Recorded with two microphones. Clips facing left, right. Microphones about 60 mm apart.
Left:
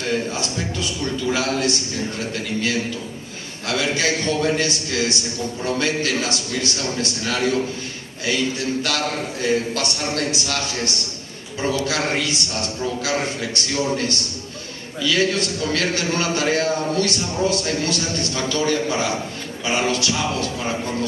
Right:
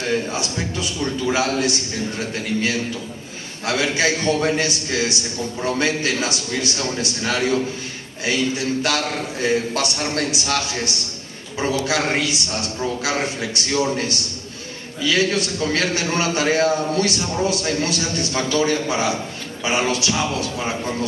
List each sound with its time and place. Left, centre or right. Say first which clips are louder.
0.7 s a man's voice: right 3 dB; right
3.6 s a man's voice: right 2 dB; right